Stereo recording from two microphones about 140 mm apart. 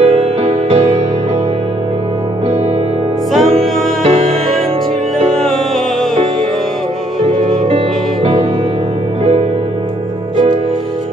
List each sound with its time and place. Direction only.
0.0 s music: 50° right (ahead or behind)
4.0 s music: 45° right (ahead or behind)
7.2 s music: 45° right (ahead or behind)